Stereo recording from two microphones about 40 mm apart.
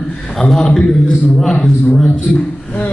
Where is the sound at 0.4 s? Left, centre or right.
Centre.